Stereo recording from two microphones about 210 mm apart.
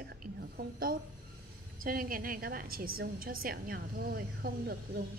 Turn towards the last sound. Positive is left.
turn(degrees=-45)  # may be behind; listen again after turning